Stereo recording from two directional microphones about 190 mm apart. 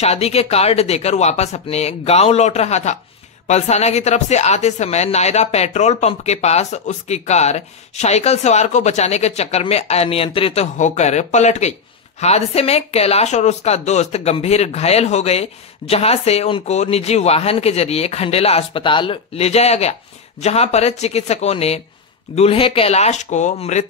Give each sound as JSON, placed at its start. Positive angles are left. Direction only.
{"t": 0.0, "sound": "speech", "side_deg": 30}